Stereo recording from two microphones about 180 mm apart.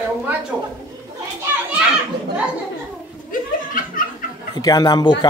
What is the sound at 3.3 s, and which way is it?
Laughter, 50° left (ahead or behind).